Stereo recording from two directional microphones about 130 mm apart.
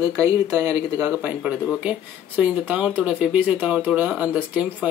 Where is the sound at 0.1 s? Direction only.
25° right (ahead or behind).